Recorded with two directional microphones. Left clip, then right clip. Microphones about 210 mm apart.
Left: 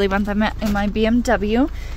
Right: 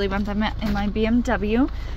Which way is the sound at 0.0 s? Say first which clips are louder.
Left 5 dB; 40° left (ahead or behind).